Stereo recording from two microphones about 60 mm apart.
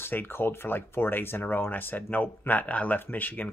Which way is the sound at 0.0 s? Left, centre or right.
Left.